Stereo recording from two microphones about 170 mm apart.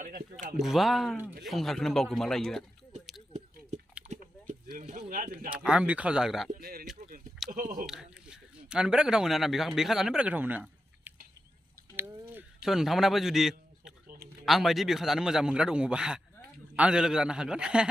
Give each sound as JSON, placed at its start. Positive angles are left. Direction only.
{"t": 0.0, "sound": "speech", "side_deg": -50}
{"t": 0.6, "sound": "a man's voice", "side_deg": 0}
{"t": 4.1, "sound": "a sound", "side_deg": -50}
{"t": 5.7, "sound": "a man's voice", "side_deg": -5}
{"t": 6.6, "sound": "speech", "side_deg": -60}
{"t": 7.5, "sound": "speech", "side_deg": -50}
{"t": 7.8, "sound": "speech", "side_deg": -5}
{"t": 12.0, "sound": "a sound", "side_deg": -10}
{"t": 14.0, "sound": "a sound", "side_deg": -70}
{"t": 14.4, "sound": "a man's voice", "side_deg": 0}